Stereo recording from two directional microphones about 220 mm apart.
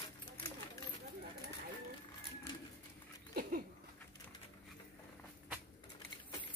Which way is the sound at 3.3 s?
40° right (ahead or behind).